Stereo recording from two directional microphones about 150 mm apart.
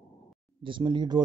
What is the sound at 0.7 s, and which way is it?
Speech, 30° right (ahead or behind).